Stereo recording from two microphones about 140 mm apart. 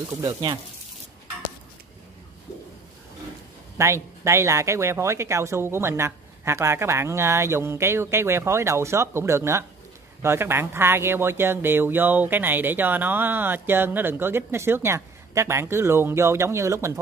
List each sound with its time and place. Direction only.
0.2 s speech: 30° right (ahead or behind)
3.7 s speech: 20° right (ahead or behind)